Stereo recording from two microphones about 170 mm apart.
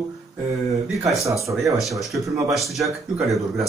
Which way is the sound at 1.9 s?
Centre (ahead or behind).